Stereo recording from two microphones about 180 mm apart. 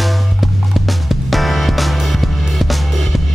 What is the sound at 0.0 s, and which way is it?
Music, centre (ahead or behind).